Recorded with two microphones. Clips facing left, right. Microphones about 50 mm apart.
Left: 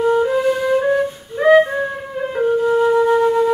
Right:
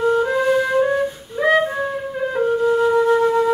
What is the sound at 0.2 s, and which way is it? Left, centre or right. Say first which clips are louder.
Flute: left 1 dB; centre.